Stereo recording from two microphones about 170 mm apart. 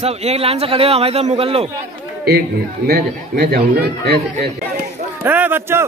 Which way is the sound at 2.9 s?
60° right (ahead or behind).